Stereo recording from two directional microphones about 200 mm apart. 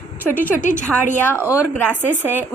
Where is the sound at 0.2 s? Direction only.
10° right (ahead or behind).